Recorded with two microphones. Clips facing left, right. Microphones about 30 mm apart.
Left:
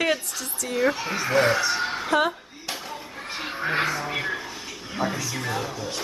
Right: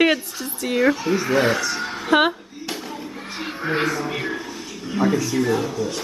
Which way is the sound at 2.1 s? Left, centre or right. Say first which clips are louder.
Right 6 dB; right.